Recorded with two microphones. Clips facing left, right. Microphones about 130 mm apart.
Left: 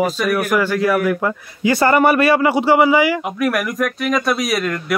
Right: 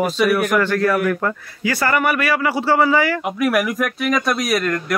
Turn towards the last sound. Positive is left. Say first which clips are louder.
# even
turn(degrees=0)  # may be behind; listen again after turning